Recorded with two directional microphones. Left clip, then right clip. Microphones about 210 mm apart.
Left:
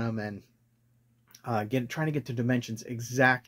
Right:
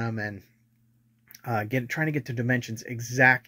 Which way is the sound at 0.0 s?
Centre (ahead or behind).